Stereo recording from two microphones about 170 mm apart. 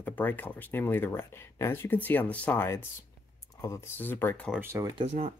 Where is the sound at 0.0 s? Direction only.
10° left (ahead or behind).